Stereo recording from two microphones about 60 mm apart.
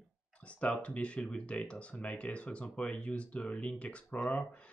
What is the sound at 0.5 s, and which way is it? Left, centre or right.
Speech, left.